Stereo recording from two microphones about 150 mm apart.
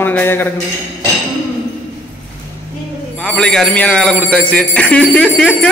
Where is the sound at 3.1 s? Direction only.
5° left (ahead or behind).